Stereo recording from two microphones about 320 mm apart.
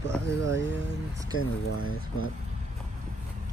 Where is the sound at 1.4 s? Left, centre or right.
Left.